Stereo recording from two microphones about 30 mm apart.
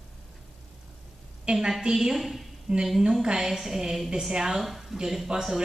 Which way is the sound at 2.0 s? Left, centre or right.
Centre.